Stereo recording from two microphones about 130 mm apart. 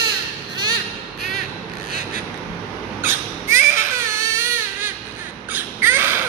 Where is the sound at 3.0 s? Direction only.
20° right (ahead or behind).